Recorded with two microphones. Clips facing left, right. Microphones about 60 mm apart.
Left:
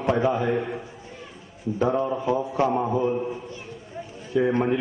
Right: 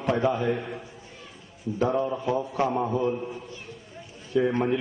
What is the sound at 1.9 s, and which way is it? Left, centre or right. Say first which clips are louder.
A man's voice: left 2 dB; centre.